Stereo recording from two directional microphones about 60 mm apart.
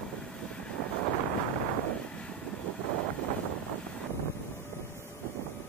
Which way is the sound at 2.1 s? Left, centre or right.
Centre.